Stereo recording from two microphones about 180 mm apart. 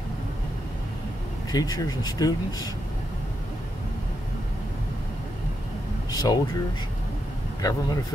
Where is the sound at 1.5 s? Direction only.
20° left (ahead or behind).